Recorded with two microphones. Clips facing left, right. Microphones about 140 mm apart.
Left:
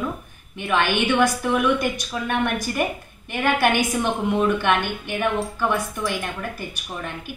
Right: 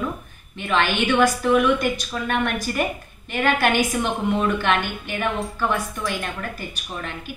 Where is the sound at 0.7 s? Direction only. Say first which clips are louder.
Even; 15° left (ahead or behind).